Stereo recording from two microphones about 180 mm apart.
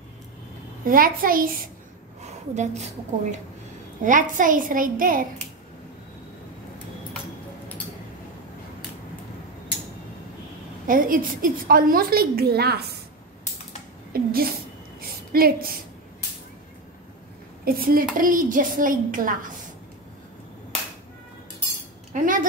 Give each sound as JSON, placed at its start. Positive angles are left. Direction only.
{"t": 0.8, "sound": "a woman's voice", "side_deg": -50}
{"t": 2.5, "sound": "a woman's voice", "side_deg": -40}
{"t": 10.9, "sound": "a woman's voice", "side_deg": -50}
{"t": 14.1, "sound": "a sound", "side_deg": -55}
{"t": 17.6, "sound": "a woman's voice", "side_deg": -55}
{"t": 22.1, "sound": "cutlery", "side_deg": -50}